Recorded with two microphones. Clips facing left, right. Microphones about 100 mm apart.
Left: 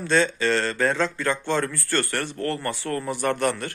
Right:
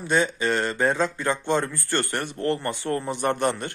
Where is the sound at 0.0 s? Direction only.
15° right (ahead or behind).